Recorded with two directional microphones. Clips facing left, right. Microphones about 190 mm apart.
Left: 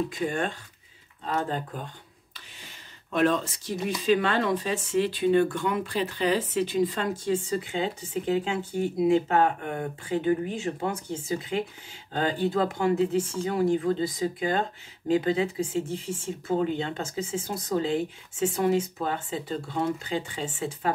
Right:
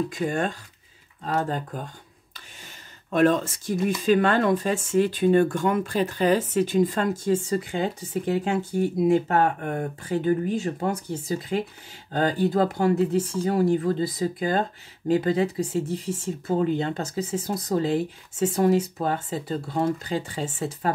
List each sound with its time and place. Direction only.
0.3 s speech: 40° right (ahead or behind)
3.1 s speech: 45° right (ahead or behind)